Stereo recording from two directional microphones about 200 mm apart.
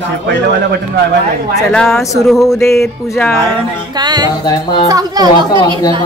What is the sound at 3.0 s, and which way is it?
Speech, 15° left (ahead or behind).